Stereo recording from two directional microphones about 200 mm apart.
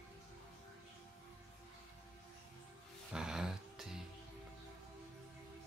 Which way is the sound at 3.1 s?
5° right (ahead or behind).